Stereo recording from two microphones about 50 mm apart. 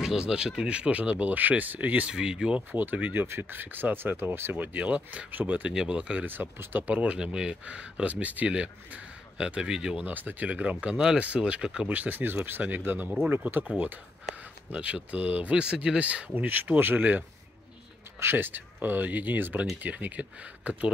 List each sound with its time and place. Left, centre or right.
0.0 s speech: centre
2.1 s speech: centre
2.5 s speech: right
4.7 s speech: right
5.7 s speech: centre
6.2 s speech: right
7.2 s speech: centre
7.6 s speech: right
10.0 s speech: right; by 11.9 s centre
11.9 s speech: right
18.2 s speech: right